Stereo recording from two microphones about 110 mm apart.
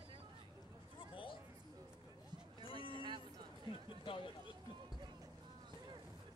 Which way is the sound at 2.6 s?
55° left (ahead or behind).